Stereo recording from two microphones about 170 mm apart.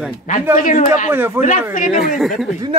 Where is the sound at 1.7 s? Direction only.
50° left (ahead or behind).